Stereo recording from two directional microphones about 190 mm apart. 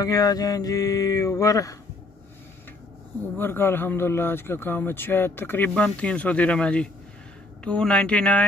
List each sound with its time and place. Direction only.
0.0 s speech: 20° left (ahead or behind)
3.3 s speech: 10° left (ahead or behind)